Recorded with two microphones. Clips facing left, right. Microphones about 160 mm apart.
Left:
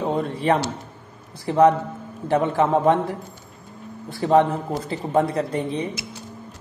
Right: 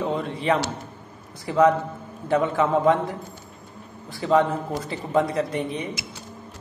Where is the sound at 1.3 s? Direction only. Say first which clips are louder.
Left 2 dB; 30° left (ahead or behind).